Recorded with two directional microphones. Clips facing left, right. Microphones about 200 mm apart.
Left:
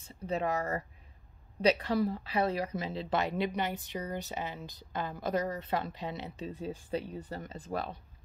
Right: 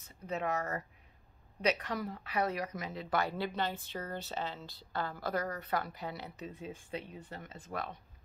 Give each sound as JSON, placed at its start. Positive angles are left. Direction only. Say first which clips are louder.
{"t": 0.0, "sound": "speech", "louder": "left 4 dB", "side_deg": 30}